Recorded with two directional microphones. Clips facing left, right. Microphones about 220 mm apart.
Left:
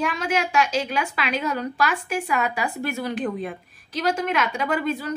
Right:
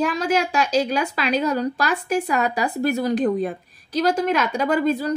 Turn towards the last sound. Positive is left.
turn(degrees=-40)  # may be behind; listen again after turning